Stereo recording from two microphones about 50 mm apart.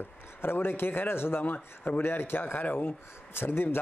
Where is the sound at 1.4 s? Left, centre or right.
Left.